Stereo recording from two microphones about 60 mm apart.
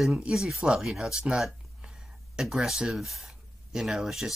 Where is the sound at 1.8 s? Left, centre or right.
Centre.